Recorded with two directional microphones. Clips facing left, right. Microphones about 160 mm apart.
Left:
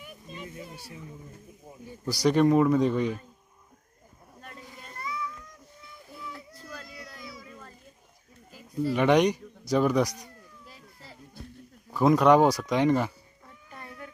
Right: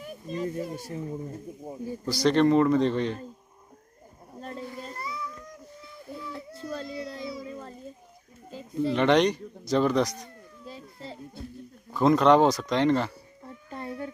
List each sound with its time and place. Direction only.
0.0 s speech: 40° right (ahead or behind)
2.0 s speech: 10° left (ahead or behind)
4.4 s wild animals: 30° right (ahead or behind)
4.8 s a sound: 30° right (ahead or behind)
6.1 s baby cry: 30° right (ahead or behind)
8.5 s bird: 25° right (ahead or behind)
8.9 s speech: 10° left (ahead or behind)
10.6 s children playing: 25° right (ahead or behind)
11.9 s speech: 10° left (ahead or behind)
13.4 s a sound: 30° right (ahead or behind)